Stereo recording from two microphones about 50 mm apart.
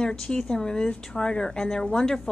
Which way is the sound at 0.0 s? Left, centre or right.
Centre.